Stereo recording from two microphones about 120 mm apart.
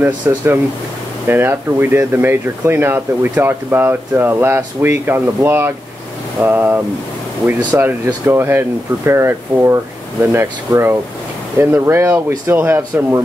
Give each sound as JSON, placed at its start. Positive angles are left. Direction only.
{"t": 0.3, "sound": "speech", "side_deg": -20}